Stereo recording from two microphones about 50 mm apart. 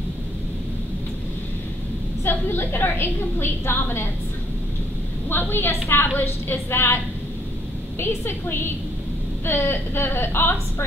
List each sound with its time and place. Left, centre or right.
2.2 s a woman's voice: left
5.3 s a woman's voice: left
8.0 s a woman's voice: left